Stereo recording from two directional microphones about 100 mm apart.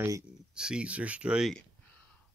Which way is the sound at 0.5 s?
10° right (ahead or behind).